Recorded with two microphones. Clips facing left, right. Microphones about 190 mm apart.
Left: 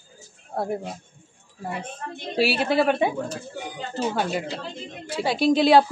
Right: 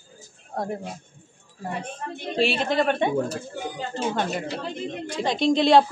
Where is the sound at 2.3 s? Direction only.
5° left (ahead or behind).